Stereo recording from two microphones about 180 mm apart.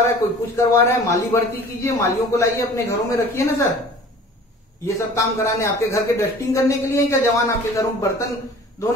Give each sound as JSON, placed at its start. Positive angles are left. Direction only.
{"t": 0.6, "sound": "a man's voice", "side_deg": 15}
{"t": 4.8, "sound": "a man's voice", "side_deg": 15}